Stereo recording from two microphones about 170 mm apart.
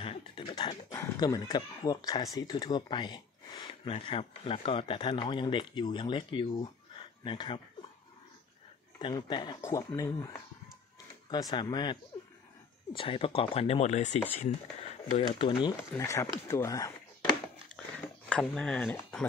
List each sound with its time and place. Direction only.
0.0 s dog: 35° left (ahead or behind)
0.6 s speech: 25° left (ahead or behind)
9.0 s speech: 25° left (ahead or behind)
15.9 s speech: 15° left (ahead or behind)
17.9 s a sound: 5° left (ahead or behind)